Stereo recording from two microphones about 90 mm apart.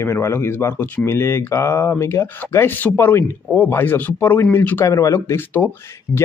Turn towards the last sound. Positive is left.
turn(degrees=30)  # may be behind; listen again after turning